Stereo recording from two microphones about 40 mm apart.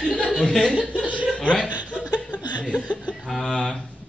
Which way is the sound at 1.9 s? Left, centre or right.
Left.